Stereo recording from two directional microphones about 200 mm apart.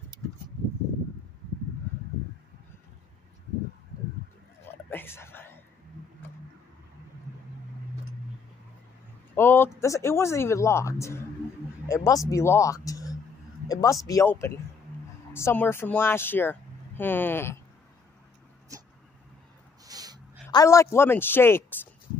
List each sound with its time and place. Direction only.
4.8 s a sound: 10° left (ahead or behind)
9.3 s speech: 10° left (ahead or behind)
19.8 s snort: 20° right (ahead or behind)
20.4 s speech: 15° left (ahead or behind)